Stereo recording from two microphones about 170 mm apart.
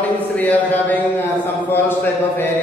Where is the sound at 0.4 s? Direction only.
10° left (ahead or behind).